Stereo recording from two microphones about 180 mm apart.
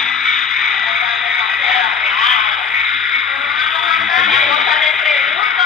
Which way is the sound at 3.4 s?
Centre (ahead or behind).